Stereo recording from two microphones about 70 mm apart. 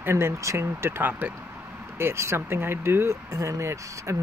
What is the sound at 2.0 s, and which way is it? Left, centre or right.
Speech, right.